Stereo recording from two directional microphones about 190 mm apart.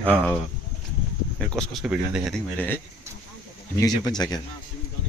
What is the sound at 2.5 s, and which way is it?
Speech, 10° left (ahead or behind).